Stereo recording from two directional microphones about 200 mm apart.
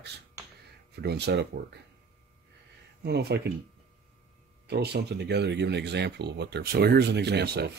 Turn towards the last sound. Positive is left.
turn(degrees=-55)  # may be behind; listen again after turning